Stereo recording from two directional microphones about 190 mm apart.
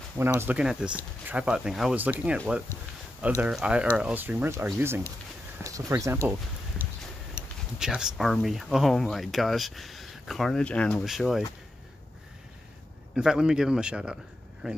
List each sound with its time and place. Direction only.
0.2 s speech: 15° right (ahead or behind)
7.8 s speech: 5° right (ahead or behind)
13.1 s speech: 5° right (ahead or behind)